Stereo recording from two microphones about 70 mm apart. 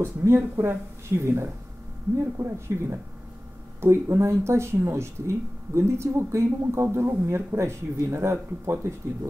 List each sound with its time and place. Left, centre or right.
0.0 s speech: right